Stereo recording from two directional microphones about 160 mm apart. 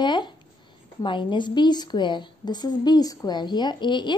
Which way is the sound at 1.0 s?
30° left (ahead or behind).